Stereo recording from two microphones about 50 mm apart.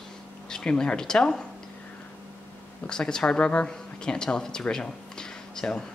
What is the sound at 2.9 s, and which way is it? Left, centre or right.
Speech, centre.